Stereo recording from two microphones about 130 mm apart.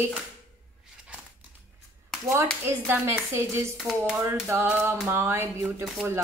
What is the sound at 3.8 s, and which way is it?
Speech, centre (ahead or behind).